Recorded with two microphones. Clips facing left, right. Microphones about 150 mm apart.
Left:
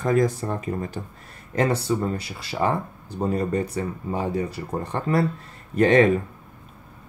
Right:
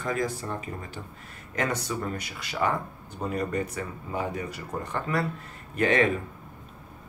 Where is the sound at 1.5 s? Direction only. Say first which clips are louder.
Left 7 dB; 30° left (ahead or behind).